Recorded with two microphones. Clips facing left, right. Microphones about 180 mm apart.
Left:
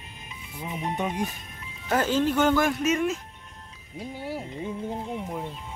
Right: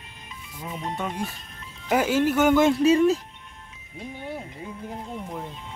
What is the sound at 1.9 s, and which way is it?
Speech, 10° right (ahead or behind).